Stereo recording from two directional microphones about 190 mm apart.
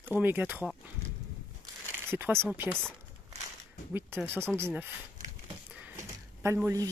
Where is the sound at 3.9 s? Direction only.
10° right (ahead or behind).